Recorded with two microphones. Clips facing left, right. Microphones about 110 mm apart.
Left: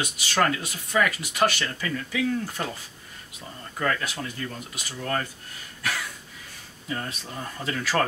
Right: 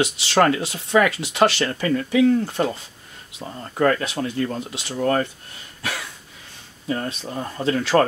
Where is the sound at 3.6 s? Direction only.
35° right (ahead or behind).